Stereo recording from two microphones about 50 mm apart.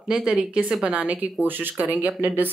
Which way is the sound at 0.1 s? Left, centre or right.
Centre.